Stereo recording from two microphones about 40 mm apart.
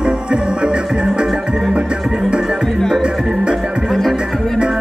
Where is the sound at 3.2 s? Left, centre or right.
Centre.